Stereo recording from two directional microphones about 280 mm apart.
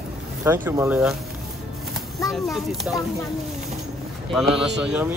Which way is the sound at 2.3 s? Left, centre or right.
Centre.